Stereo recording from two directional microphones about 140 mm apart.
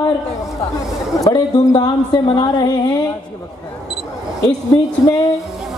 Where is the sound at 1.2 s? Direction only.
30° left (ahead or behind).